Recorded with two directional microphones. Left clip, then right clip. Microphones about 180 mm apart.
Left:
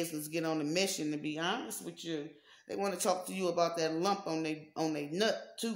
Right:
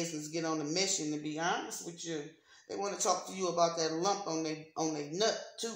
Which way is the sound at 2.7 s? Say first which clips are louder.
Even; 50° left (ahead or behind).